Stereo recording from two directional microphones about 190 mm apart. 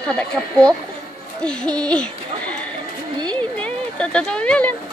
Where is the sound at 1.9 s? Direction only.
5° left (ahead or behind).